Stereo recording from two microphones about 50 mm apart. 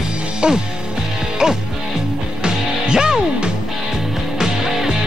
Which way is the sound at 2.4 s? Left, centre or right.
Centre.